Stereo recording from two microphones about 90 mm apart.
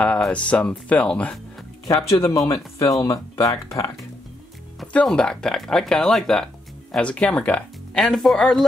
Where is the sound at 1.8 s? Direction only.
40° left (ahead or behind).